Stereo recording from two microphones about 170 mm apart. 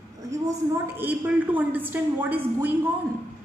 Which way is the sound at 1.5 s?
10° right (ahead or behind).